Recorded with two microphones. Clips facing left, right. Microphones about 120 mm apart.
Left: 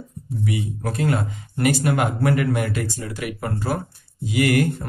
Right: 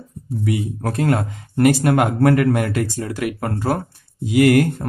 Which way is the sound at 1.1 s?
65° right (ahead or behind).